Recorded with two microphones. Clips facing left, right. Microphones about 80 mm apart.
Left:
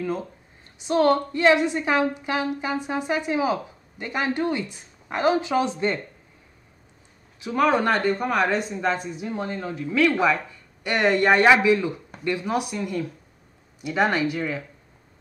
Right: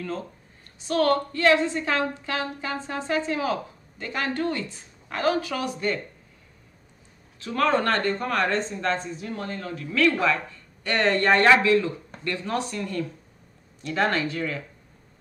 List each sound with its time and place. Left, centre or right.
0.0 s speech: centre
7.3 s speech: centre